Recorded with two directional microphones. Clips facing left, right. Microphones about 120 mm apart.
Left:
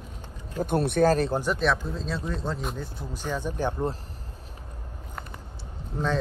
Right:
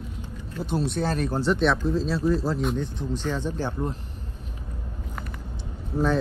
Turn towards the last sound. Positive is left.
turn(degrees=-5)  # may be behind; listen again after turning